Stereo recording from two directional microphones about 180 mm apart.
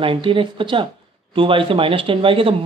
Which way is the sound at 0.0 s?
30° right (ahead or behind).